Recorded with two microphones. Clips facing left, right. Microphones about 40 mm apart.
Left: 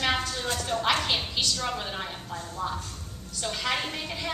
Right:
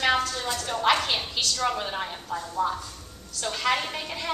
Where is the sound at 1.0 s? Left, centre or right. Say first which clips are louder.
Even; centre.